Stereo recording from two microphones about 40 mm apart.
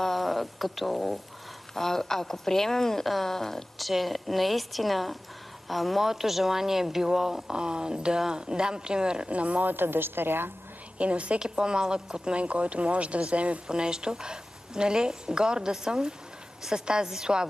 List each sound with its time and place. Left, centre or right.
0.0 s a woman's voice: centre
7.5 s a woman's voice: right
9.3 s speech: right
9.7 s a woman's voice: right
11.0 s speech: right
11.4 s a woman's voice: right
12.4 s speech: right
13.7 s a woman's voice: centre